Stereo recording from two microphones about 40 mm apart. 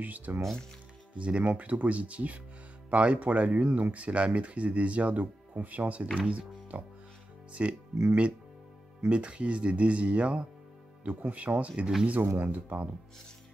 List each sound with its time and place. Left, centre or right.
0.0 s speech: right
1.1 s speech: right
12.4 s speech: right